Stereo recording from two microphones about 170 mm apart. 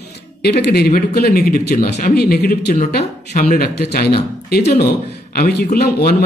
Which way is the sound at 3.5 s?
70° left (ahead or behind).